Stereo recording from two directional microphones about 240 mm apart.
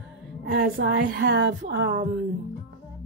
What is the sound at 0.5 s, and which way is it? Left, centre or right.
A woman's voice, right.